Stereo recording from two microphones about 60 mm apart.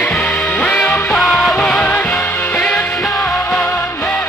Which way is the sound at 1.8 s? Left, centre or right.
Left.